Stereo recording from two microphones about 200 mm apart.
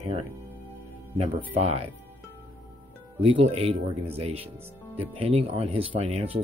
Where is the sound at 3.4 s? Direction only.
30° right (ahead or behind).